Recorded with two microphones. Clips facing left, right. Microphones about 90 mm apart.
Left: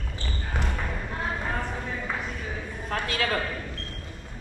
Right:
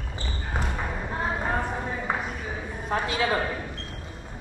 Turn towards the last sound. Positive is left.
turn(degrees=-15)  # may be behind; listen again after turning